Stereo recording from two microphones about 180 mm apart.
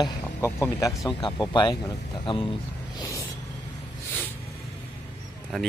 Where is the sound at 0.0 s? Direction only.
15° left (ahead or behind).